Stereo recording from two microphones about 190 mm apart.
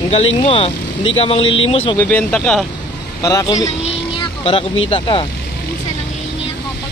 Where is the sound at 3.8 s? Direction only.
30° left (ahead or behind).